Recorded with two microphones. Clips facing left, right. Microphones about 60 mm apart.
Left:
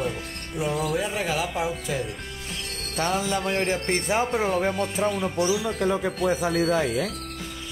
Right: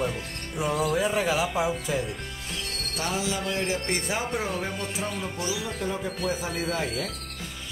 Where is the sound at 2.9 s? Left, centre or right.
Left.